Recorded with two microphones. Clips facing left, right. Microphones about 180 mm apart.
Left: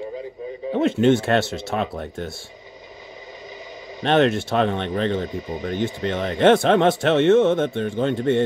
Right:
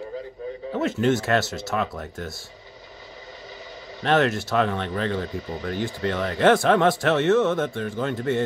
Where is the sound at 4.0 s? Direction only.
25° left (ahead or behind).